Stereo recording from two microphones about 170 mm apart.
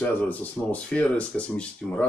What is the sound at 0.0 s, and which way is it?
Speech, 10° left (ahead or behind).